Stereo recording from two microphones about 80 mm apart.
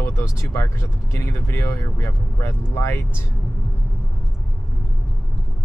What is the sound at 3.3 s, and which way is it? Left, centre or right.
Vehicle, centre.